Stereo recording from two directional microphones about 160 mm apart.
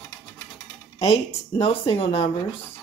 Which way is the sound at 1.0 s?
35° left (ahead or behind).